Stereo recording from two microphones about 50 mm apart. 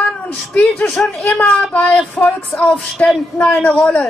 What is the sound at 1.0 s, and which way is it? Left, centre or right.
Speech, centre.